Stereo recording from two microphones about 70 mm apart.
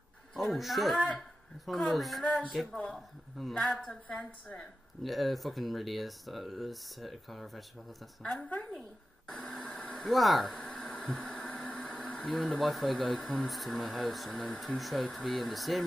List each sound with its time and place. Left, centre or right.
0.3 s speech: centre
0.9 s a woman's voice: centre
4.1 s a woman's voice: centre
5.0 s a woman's voice: centre
9.3 s a sound: centre
10.0 s speech: centre
10.5 s a sound: centre
12.3 s speech: centre